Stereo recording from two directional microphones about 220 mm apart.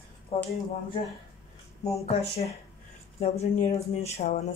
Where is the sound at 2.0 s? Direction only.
30° left (ahead or behind).